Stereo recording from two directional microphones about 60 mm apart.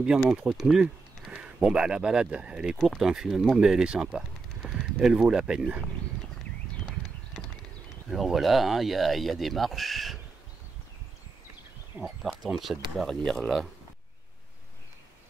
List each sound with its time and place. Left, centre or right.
0.3 s speech: centre
0.6 s speech: centre
2.8 s speech: centre
8.1 s speech: centre
12.0 s speech: centre
13.0 s speech: centre